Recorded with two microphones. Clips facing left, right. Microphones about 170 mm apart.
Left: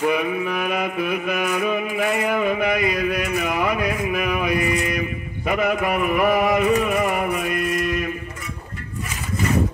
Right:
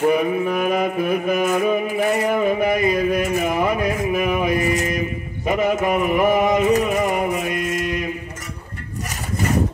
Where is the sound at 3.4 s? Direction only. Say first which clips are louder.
Right 2 dB; 30° right (ahead or behind).